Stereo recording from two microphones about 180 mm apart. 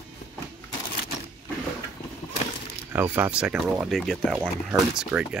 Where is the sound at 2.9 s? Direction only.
10° right (ahead or behind).